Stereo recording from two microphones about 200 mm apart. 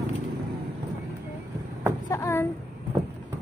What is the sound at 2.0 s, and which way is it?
Child singing, 15° left (ahead or behind).